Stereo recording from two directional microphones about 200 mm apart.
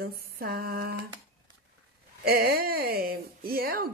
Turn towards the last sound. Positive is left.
turn(degrees=-45)  # may be behind; listen again after turning